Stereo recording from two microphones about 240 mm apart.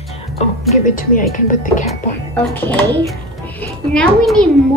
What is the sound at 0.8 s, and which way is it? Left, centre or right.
Speech, left.